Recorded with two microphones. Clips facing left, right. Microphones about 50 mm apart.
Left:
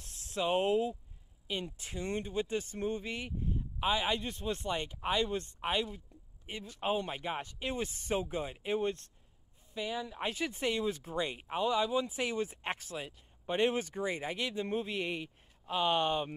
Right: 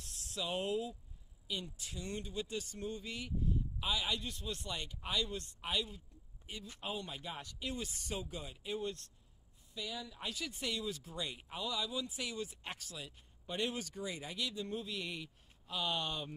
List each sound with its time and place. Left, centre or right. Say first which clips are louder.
0.3 s speech: left 8 dB; left